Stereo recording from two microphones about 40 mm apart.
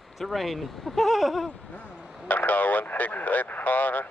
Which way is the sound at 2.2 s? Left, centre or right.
Left.